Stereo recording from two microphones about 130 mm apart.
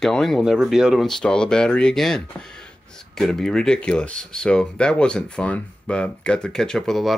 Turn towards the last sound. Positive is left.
turn(degrees=0)  # may be behind; listen again after turning